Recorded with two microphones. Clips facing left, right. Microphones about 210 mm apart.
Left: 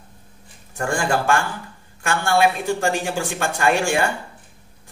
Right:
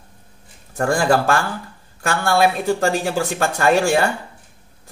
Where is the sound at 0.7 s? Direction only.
35° right (ahead or behind).